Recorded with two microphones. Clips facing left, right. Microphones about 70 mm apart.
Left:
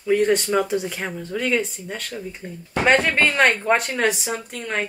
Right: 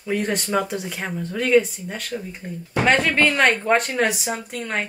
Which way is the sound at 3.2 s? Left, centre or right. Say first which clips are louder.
Even; left.